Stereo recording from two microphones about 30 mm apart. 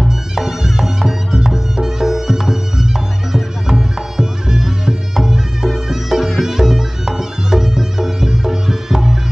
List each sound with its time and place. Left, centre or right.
0.4 s music: centre